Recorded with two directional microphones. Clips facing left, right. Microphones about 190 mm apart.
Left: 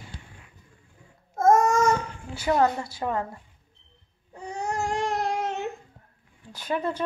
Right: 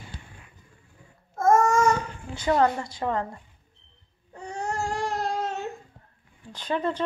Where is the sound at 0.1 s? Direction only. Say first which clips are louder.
Right 1 dB; 55° right (ahead or behind).